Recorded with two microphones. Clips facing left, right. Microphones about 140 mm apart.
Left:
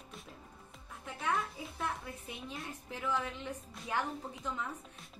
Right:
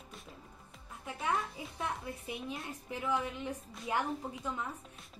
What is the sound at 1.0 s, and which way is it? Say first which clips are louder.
A woman's voice: right 1 dB; centre (ahead or behind).